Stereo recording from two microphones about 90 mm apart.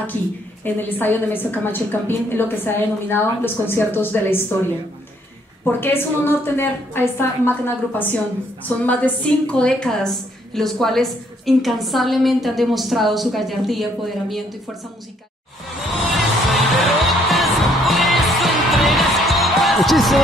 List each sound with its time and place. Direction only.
0.7 s a woman's voice: 20° left (ahead or behind)
5.7 s a woman's voice: 25° left (ahead or behind); by 14.4 s centre (ahead or behind)
15.9 s music: centre (ahead or behind)